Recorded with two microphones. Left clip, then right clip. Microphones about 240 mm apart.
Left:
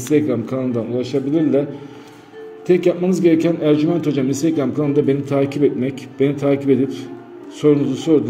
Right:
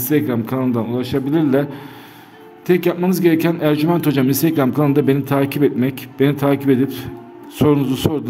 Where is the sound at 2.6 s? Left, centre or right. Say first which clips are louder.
Left 1 dB; right.